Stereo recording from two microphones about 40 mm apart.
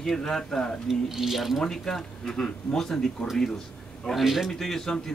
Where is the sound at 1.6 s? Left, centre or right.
Centre.